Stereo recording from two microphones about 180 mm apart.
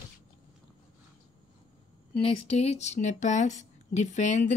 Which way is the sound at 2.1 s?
30° left (ahead or behind).